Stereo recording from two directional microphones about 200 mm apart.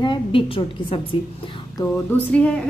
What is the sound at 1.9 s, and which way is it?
Speech, 5° left (ahead or behind).